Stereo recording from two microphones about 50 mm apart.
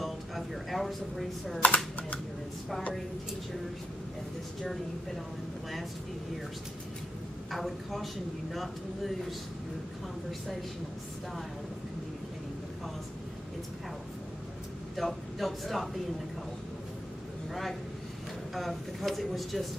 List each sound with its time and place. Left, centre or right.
0.0 s a sound: centre
1.6 s speech: left
7.5 s speech: centre
15.0 s a man's voice: centre
18.5 s speech: centre